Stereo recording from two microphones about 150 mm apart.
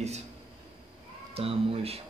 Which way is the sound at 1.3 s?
40° right (ahead or behind).